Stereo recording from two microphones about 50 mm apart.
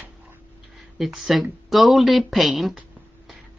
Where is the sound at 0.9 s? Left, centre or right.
Centre.